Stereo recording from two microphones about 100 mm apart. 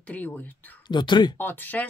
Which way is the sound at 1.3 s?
20° left (ahead or behind).